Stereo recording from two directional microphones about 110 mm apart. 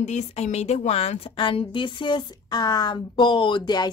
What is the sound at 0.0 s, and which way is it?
A woman's voice, 90° left.